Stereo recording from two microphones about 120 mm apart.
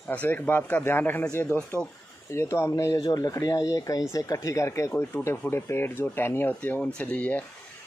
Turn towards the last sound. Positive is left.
turn(degrees=15)  # may be behind; listen again after turning